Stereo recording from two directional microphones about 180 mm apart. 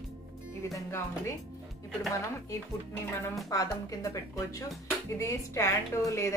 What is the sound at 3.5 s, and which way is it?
A woman's voice, 20° left (ahead or behind).